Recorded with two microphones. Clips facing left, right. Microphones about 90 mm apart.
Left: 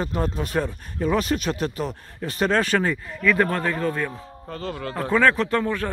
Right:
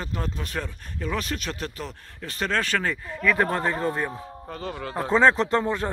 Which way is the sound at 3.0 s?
15° right (ahead or behind).